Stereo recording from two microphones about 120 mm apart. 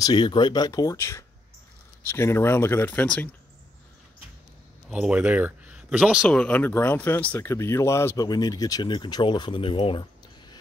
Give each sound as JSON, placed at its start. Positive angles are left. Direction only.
{"t": 0.0, "sound": "speech", "side_deg": 40}
{"t": 4.8, "sound": "a sound", "side_deg": 0}
{"t": 5.1, "sound": "speech", "side_deg": -15}
{"t": 6.2, "sound": "speech", "side_deg": 10}
{"t": 8.3, "sound": "speech", "side_deg": 35}